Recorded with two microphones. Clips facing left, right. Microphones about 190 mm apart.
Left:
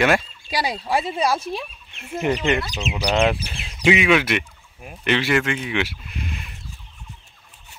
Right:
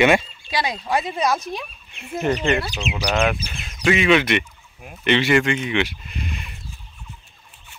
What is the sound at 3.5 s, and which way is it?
Bird, 30° left (ahead or behind).